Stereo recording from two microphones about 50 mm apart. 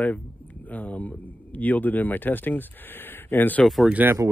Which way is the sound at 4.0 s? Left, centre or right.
Right.